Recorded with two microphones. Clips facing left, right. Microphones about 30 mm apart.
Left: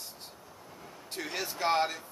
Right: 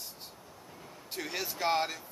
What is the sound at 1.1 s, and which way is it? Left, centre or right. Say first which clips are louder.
Speech: left 1 dB; centre.